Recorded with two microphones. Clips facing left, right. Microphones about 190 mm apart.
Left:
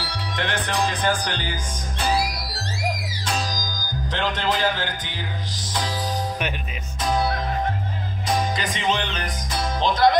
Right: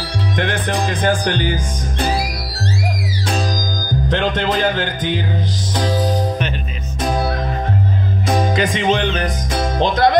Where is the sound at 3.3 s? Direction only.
55° right (ahead or behind).